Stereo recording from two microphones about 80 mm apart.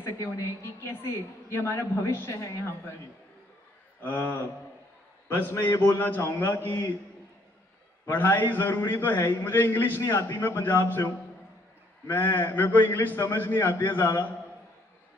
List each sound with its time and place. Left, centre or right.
0.0 s a woman's voice: left
4.0 s a man's voice: left
8.0 s a man's voice: left
12.1 s a man's voice: left